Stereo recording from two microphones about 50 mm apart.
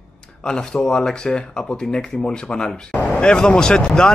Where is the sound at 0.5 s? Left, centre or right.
Centre.